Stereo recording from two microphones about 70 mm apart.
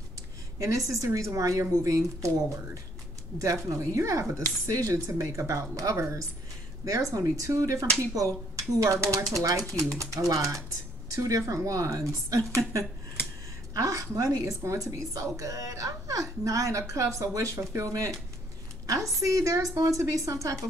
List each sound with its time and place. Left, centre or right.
0.6 s a woman's voice: right